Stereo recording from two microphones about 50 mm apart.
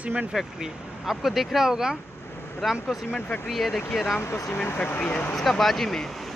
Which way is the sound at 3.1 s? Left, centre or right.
Left.